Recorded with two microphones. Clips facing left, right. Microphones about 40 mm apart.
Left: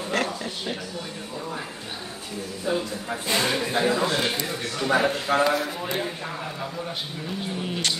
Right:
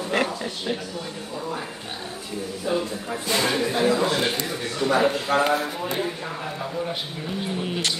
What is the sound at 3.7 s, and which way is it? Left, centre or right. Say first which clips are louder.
A man's voice: right 2 dB; centre.